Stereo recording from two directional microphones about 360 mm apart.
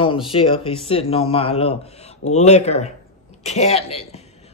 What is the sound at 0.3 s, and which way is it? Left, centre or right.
Speech, centre.